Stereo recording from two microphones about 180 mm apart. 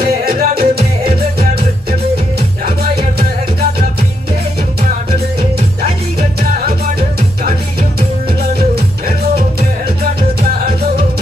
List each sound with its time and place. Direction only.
0.0 s music: 55° right (ahead or behind)
5.1 s music: 35° right (ahead or behind)
6.4 s music: 55° right (ahead or behind)
10.5 s music: 55° right (ahead or behind)